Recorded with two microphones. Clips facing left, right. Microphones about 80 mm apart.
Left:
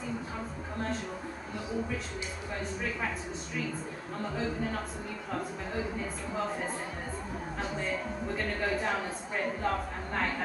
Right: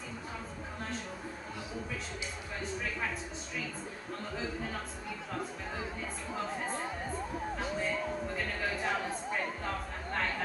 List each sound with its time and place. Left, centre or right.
2.6 s speech: centre
7.5 s speech: centre